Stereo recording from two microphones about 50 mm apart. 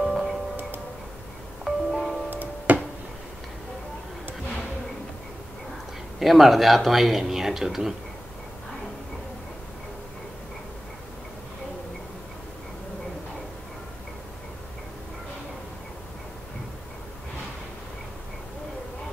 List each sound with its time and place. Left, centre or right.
0.0 s music: centre
1.6 s music: centre
2.2 s music: right
6.1 s speech: centre